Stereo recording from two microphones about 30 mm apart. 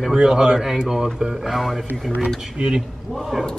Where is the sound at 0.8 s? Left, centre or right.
Centre.